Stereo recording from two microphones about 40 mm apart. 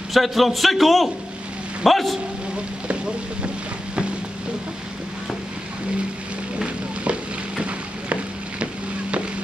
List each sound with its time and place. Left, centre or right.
0.1 s a man's voice: centre
6.6 s stir: right